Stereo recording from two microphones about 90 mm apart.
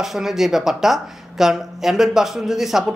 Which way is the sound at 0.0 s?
5° right (ahead or behind).